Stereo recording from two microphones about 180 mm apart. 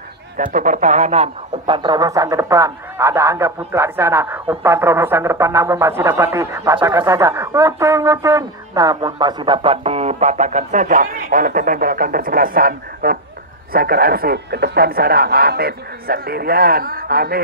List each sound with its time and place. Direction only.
0.4 s a man's voice: 45° right (ahead or behind)